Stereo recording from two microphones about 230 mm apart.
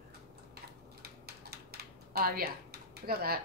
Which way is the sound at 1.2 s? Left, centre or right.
Right.